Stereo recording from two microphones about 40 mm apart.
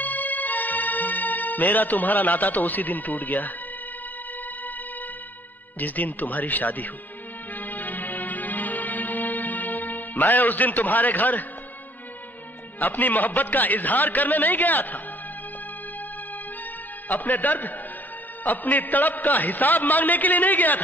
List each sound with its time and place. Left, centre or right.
0.0 s music: left
5.8 s a man's voice: left
7.5 s music: left
12.7 s a man's voice: left
17.1 s a man's voice: left